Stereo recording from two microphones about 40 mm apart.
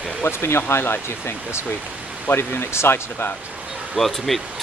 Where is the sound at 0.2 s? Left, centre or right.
Left.